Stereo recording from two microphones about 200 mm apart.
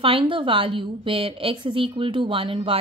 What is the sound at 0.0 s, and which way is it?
A woman's voice, 25° right (ahead or behind).